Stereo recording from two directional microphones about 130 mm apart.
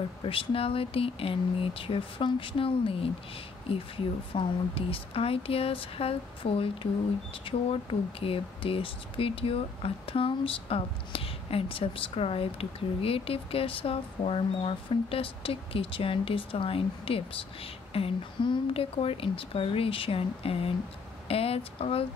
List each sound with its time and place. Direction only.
0.2 s speech: 45° left (ahead or behind)